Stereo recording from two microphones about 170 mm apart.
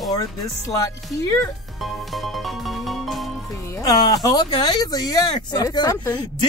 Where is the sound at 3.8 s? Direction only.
20° left (ahead or behind).